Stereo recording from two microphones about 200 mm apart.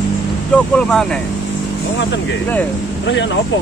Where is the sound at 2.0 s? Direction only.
65° left (ahead or behind).